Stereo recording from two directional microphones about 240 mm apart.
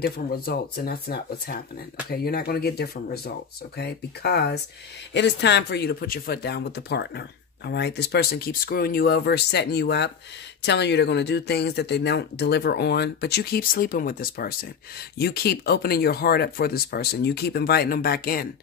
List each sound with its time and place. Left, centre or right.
0.0 s speech: left